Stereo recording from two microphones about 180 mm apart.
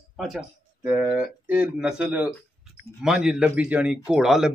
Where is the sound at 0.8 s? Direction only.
10° right (ahead or behind).